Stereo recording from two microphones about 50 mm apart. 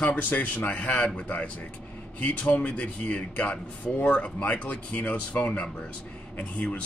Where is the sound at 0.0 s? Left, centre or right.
Left.